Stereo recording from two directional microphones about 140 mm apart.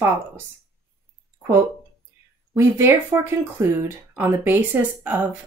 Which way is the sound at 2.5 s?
15° right (ahead or behind).